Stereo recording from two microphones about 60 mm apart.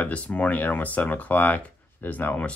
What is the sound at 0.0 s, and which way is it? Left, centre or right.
Speech, left.